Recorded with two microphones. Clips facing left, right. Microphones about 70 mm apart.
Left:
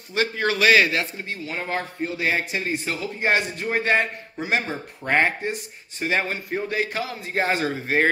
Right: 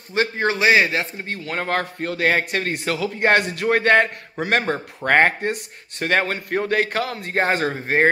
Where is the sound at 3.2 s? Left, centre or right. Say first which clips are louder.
Right 5 dB; right.